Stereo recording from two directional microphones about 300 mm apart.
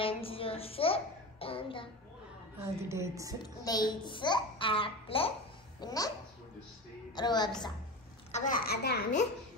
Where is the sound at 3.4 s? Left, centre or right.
Centre.